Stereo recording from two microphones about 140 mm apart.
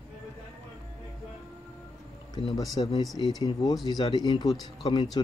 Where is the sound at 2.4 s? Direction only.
30° left (ahead or behind).